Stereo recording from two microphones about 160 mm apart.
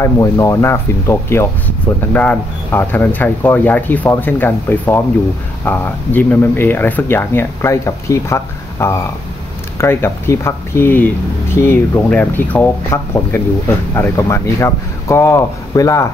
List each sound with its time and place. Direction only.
0.0 s speech: 20° left (ahead or behind)